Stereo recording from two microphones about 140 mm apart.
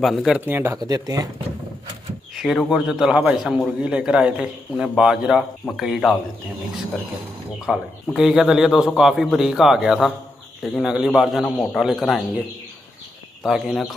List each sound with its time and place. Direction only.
0.0 s a man's voice: centre (ahead or behind)
0.5 s speech: 15° right (ahead or behind)
0.8 s speech: 25° right (ahead or behind)
2.3 s a man's voice: 5° right (ahead or behind)
7.6 s a man's voice: centre (ahead or behind)
13.4 s a man's voice: centre (ahead or behind)